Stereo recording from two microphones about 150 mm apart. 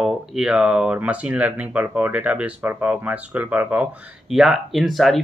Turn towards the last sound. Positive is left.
turn(degrees=0)  # may be behind; listen again after turning